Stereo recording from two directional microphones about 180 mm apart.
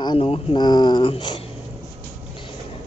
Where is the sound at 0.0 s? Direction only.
25° left (ahead or behind).